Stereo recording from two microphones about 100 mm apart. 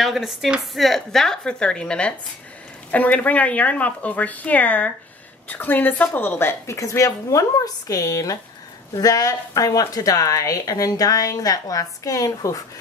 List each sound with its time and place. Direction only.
0.0 s a woman's voice: centre (ahead or behind); by 12.5 s 35° left (ahead or behind)